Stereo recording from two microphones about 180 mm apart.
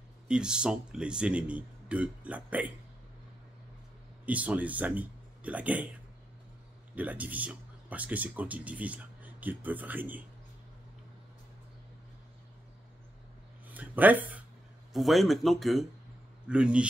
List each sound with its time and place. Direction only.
0.3 s speech: 5° right (ahead or behind)
4.3 s speech: 10° right (ahead or behind)
7.0 s speech: 10° right (ahead or behind)
13.7 s speech: 10° right (ahead or behind)